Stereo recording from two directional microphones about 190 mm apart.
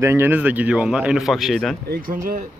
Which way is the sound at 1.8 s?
55° right (ahead or behind).